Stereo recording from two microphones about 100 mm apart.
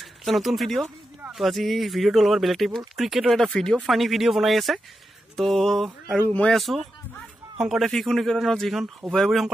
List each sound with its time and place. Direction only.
0.0 s a man's voice: centre (ahead or behind)
6.0 s speech: 10° left (ahead or behind)
6.5 s a man's voice: centre (ahead or behind)